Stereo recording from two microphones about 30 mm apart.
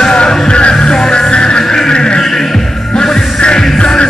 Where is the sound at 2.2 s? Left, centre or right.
Centre.